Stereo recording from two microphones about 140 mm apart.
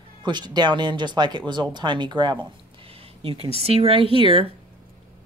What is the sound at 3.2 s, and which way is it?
Speech, 45° right (ahead or behind).